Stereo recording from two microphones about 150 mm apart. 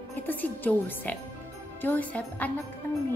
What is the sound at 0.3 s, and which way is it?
Speech, 10° left (ahead or behind).